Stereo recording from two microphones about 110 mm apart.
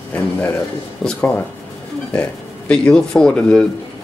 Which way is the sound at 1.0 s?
5° left (ahead or behind).